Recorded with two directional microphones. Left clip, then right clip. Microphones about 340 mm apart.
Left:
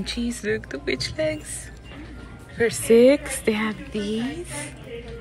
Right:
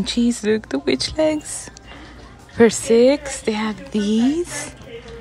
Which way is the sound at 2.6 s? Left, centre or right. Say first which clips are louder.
Right 2 dB; centre.